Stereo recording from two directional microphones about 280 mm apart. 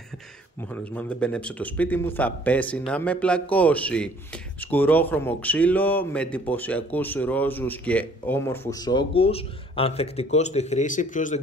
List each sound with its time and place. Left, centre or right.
0.7 s a man's voice: centre; by 11.4 s left